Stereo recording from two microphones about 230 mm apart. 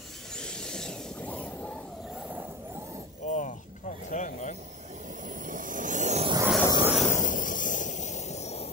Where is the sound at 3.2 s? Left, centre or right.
Left.